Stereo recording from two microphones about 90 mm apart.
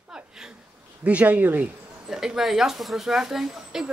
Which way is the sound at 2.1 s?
5° right (ahead or behind).